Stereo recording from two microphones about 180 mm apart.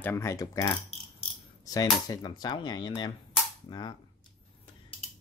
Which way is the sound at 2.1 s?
25° left (ahead or behind).